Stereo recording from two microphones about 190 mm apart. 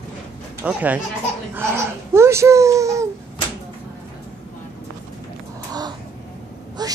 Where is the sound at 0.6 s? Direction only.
10° right (ahead or behind).